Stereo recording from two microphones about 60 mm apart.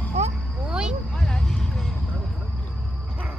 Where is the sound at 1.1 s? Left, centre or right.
Centre.